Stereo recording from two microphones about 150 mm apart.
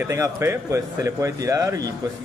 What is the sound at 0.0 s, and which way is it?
A man's voice, 20° right (ahead or behind).